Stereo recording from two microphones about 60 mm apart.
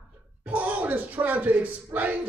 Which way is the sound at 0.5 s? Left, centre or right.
Right.